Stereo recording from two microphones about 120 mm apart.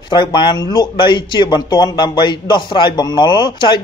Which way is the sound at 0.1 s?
40° left (ahead or behind).